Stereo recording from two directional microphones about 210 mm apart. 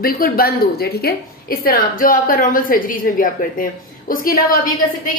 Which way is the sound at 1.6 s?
45° left (ahead or behind).